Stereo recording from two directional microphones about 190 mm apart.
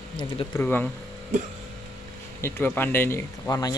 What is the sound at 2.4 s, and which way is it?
Speech, 10° left (ahead or behind).